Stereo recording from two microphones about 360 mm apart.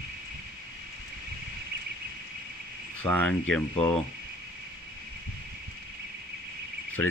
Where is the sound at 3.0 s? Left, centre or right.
Centre.